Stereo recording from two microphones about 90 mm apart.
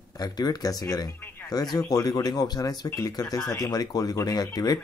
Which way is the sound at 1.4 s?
45° left (ahead or behind).